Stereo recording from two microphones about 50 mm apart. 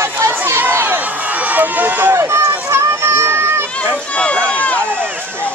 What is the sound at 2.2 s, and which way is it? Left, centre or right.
Run, right.